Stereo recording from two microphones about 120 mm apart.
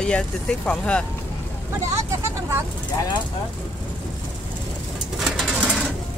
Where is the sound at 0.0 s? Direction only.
10° left (ahead or behind).